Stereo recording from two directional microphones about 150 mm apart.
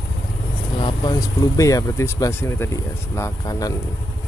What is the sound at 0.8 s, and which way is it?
Speech, 25° left (ahead or behind).